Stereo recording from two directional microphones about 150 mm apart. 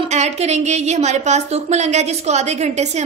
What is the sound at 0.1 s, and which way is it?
A woman's voice, 50° right (ahead or behind).